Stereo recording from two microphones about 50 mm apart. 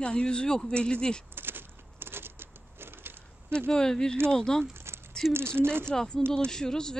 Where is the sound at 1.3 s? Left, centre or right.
Right.